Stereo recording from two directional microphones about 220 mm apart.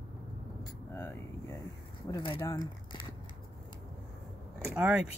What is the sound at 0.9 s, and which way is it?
Air conditioning, 10° left (ahead or behind).